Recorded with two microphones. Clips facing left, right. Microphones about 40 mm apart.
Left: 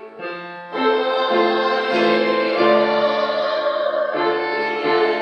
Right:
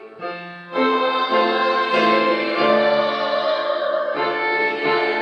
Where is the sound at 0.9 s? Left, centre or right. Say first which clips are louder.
Left 3 dB; right.